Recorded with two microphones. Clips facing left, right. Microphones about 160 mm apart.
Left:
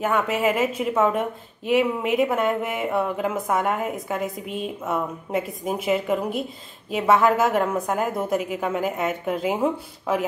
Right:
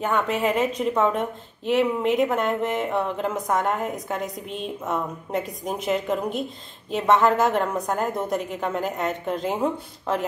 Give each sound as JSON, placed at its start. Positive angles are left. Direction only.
{"t": 0.0, "sound": "a woman's voice", "side_deg": 5}